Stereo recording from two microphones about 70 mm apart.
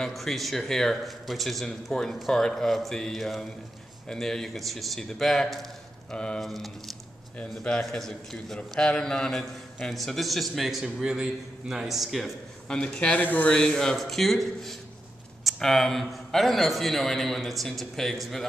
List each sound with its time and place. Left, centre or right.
0.0 s speech: centre
6.1 s speech: centre
6.4 s speech: centre
7.3 s speech: centre
12.6 s speech: centre
13.2 s speech: left
13.5 s speech: centre